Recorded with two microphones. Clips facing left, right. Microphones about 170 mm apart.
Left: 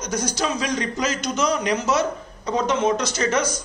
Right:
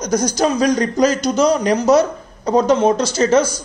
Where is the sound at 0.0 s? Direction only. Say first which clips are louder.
Right 8 dB; 40° right (ahead or behind).